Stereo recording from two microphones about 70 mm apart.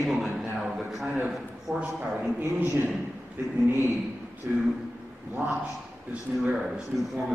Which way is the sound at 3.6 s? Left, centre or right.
Right.